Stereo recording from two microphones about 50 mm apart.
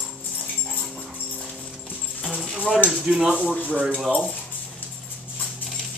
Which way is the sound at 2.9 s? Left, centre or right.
Centre.